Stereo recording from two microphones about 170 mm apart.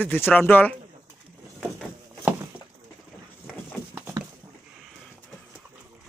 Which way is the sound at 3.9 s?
15° right (ahead or behind).